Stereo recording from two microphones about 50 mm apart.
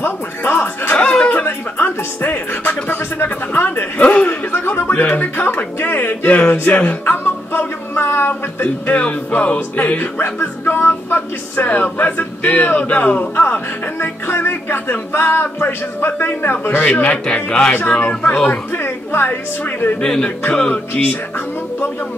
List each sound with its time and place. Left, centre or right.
0.0 s music: left
0.9 s chuckle: left
1.3 s music: left
4.0 s a sound: left
8.9 s music: left
9.9 s music: left
11.6 s a sound: left
13.9 s music: left
16.8 s music: left
17.7 s a sound: left
20.0 s speech: centre